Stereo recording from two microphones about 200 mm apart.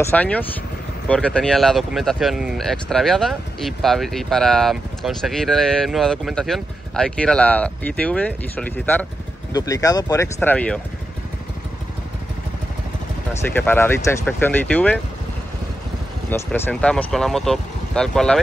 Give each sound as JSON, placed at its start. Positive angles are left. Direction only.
{"t": 0.0, "sound": "speech", "side_deg": 5}
{"t": 13.3, "sound": "speech", "side_deg": 10}
{"t": 16.3, "sound": "speech", "side_deg": 10}